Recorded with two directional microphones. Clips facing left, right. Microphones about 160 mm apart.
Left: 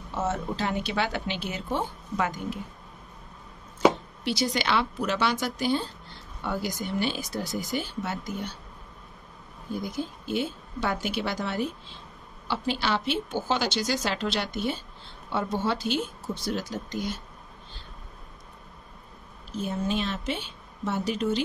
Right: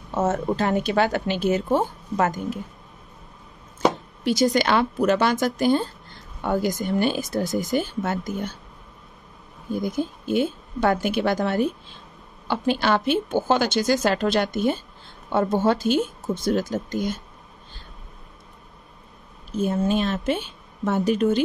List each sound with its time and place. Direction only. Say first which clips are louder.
0.1 s speech: right 7 dB; 50° right (ahead or behind)
4.2 s speech: right 8 dB; 45° right (ahead or behind)
9.8 s speech: right 7 dB; 50° right (ahead or behind)
19.5 s speech: right 7 dB; 50° right (ahead or behind)